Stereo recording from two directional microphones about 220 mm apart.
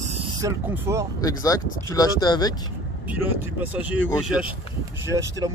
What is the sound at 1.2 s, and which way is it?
Speech, 15° left (ahead or behind).